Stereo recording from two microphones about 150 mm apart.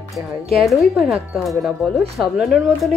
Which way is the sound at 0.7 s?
5° right (ahead or behind).